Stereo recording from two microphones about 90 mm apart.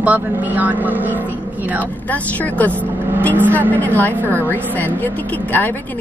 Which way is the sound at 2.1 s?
15° left (ahead or behind).